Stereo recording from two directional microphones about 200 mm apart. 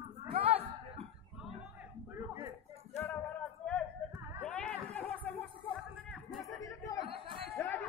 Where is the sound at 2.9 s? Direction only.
10° left (ahead or behind).